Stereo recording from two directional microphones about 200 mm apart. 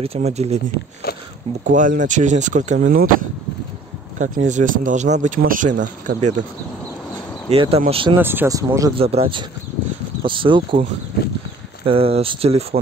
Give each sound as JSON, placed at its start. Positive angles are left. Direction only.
{"t": 0.0, "sound": "speech", "side_deg": -30}
{"t": 1.1, "sound": "zipper", "side_deg": 50}
{"t": 1.7, "sound": "speech", "side_deg": -40}
{"t": 7.4, "sound": "speech", "side_deg": -25}
{"t": 8.2, "sound": "speech", "side_deg": -10}
{"t": 8.9, "sound": "speech", "side_deg": -30}